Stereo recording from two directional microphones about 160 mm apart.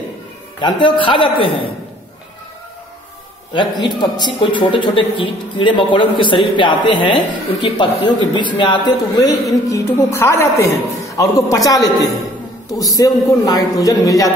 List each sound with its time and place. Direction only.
0.6 s a man's voice: 30° left (ahead or behind)
3.5 s a man's voice: 30° left (ahead or behind)